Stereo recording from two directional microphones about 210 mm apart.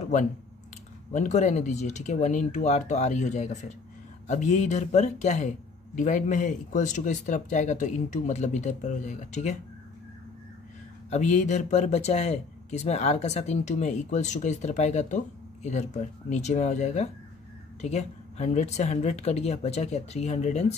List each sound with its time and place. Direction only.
1.1 s speech: 35° left (ahead or behind)
11.1 s speech: 30° left (ahead or behind)